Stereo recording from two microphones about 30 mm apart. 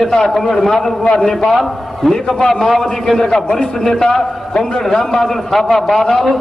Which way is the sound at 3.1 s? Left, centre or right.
Centre.